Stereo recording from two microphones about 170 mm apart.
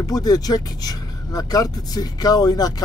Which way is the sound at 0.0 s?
20° left (ahead or behind).